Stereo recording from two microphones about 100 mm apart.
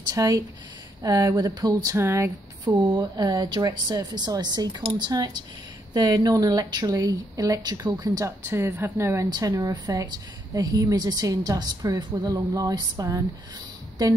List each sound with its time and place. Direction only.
0.1 s speech: 35° right (ahead or behind)
3.0 s speech: 40° right (ahead or behind)